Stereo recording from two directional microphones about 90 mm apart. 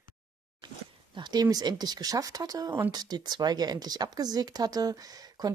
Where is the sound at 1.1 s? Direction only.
50° right (ahead or behind).